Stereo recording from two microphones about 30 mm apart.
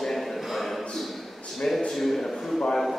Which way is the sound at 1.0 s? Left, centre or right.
Centre.